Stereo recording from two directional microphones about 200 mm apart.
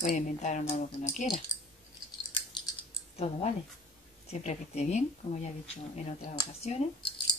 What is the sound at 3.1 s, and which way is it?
Speech, 30° left (ahead or behind).